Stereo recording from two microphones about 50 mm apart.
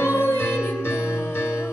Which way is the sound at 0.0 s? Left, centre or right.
Left.